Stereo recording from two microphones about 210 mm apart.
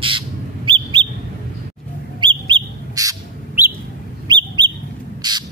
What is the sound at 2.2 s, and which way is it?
Bird, 20° right (ahead or behind).